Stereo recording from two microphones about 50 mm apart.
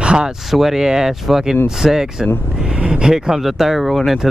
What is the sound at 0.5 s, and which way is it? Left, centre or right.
Speech, centre.